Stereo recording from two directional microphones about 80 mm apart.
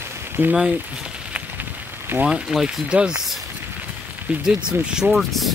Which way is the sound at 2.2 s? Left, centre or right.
Centre.